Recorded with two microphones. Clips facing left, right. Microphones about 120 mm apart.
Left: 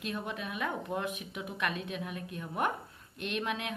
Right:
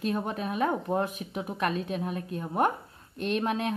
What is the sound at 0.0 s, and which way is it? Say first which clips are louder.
A woman's voice: right 7 dB; 40° right (ahead or behind).